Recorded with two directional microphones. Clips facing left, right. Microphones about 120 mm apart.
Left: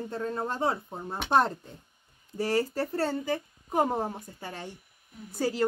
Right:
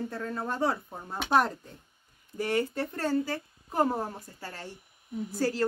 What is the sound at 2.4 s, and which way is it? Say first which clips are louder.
Speech: left 1 dB; 35° left (ahead or behind).